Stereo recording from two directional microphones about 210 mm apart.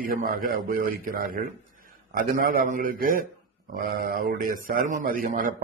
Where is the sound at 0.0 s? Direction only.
40° right (ahead or behind).